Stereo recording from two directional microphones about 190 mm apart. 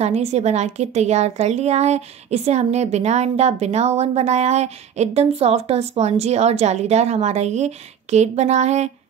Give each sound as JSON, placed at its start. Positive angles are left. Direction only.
{"t": 0.0, "sound": "a woman's voice", "side_deg": -35}